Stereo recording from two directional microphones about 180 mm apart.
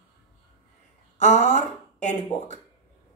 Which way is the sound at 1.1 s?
40° left (ahead or behind).